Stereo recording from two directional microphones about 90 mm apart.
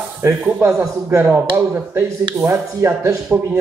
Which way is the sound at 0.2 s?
30° right (ahead or behind).